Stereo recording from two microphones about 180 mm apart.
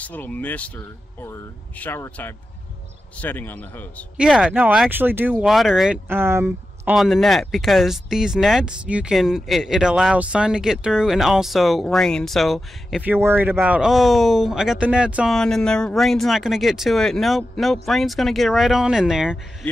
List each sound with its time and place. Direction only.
0.0 s speech: 10° left (ahead or behind)
4.2 s speech: 5° right (ahead or behind)
6.0 s speech: 15° right (ahead or behind)
7.0 s speech: centre (ahead or behind)